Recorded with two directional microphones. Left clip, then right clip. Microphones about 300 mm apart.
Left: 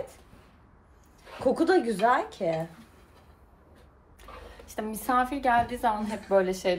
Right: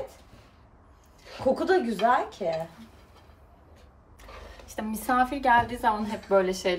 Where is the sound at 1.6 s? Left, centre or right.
Left.